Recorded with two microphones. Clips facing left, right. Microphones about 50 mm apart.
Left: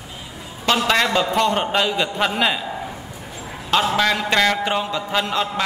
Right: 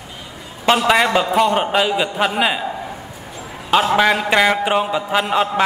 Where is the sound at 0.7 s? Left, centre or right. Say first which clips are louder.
Right 4 dB; centre.